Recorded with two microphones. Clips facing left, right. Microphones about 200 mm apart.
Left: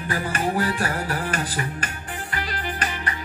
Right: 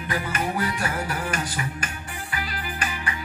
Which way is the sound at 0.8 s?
35° left (ahead or behind).